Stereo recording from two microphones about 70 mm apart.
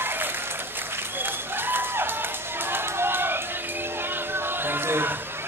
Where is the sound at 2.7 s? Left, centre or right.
Right.